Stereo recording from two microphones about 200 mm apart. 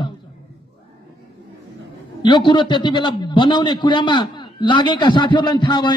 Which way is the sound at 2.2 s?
20° left (ahead or behind).